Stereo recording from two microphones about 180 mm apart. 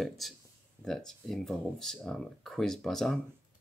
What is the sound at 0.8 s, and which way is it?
Speech, centre (ahead or behind).